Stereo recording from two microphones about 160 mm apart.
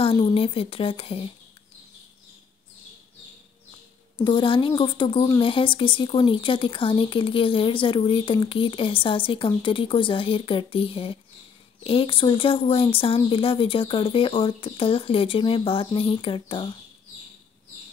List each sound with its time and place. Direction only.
0.0 s speech: 35° left (ahead or behind)
4.2 s speech: 30° left (ahead or behind)